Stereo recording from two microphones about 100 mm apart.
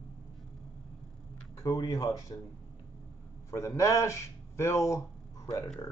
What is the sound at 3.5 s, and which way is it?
Speech, 30° left (ahead or behind).